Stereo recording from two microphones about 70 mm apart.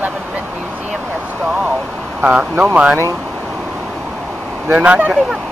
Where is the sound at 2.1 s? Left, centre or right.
Centre.